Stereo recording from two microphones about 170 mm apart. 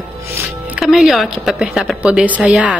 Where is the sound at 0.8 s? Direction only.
Centre (ahead or behind).